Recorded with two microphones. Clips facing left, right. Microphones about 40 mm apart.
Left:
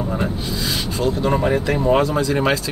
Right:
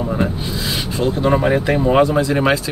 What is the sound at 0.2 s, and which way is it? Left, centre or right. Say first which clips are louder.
Speech: right 2 dB; centre.